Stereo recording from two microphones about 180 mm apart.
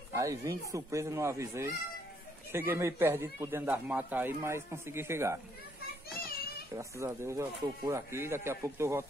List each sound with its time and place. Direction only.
0.1 s speech: 15° right (ahead or behind)
6.7 s speech: 15° right (ahead or behind)